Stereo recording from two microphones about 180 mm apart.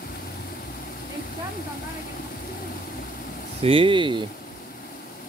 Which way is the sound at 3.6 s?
30° right (ahead or behind).